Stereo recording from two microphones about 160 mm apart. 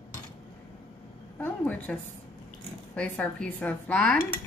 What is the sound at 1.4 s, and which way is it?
A woman's voice, 10° left (ahead or behind).